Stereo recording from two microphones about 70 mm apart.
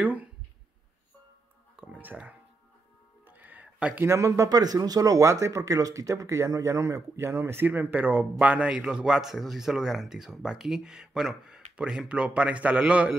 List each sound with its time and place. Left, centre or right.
0.0 s speech: right
1.8 s music: right
4.0 s speech: right
4.5 s speech: right; by 13.1 s centre